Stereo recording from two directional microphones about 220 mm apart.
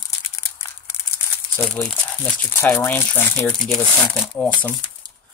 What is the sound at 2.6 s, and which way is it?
Speech, 10° left (ahead or behind).